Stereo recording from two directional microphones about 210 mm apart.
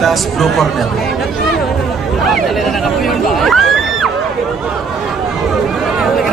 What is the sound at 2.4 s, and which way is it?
Speech, centre (ahead or behind).